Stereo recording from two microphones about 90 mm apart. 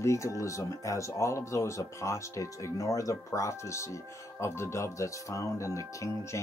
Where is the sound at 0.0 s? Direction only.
35° left (ahead or behind).